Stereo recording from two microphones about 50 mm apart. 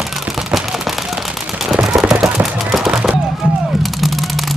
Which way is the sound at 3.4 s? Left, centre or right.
Centre.